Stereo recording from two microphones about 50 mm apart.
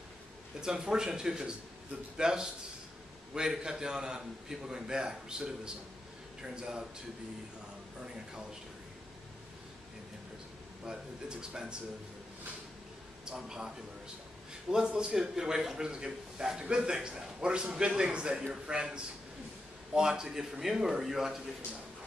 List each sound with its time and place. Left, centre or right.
0.6 s a man's voice: centre
10.9 s a man's voice: centre
13.2 s a man's voice: centre
14.7 s a man's voice: centre